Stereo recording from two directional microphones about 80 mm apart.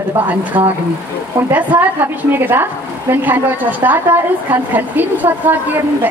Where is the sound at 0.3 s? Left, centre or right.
Right.